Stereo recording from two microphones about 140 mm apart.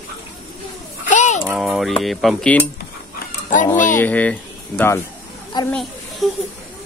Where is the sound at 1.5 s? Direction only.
Centre (ahead or behind).